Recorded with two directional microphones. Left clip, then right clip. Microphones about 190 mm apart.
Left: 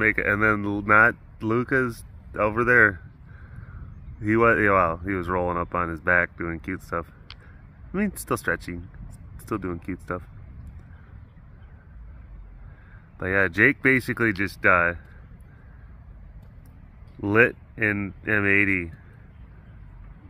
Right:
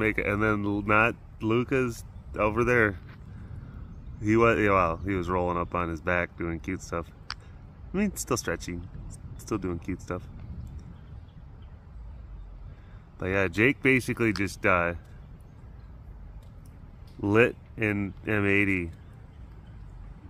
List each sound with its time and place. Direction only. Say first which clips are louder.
0.0 s speech: left 5 dB; 5° left (ahead or behind)
4.2 s speech: left 3 dB; 5° left (ahead or behind)
13.2 s speech: left 5 dB; 5° left (ahead or behind)
17.2 s speech: left 3 dB; centre (ahead or behind)